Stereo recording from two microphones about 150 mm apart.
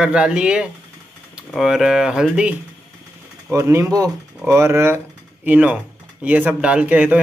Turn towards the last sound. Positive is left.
turn(degrees=-10)  # may be behind; listen again after turning